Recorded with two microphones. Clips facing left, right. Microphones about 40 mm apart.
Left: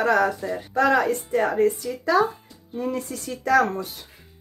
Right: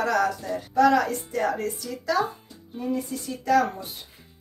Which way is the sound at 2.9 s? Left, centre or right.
Left.